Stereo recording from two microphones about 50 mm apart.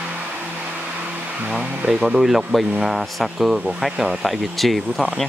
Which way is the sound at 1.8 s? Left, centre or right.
Centre.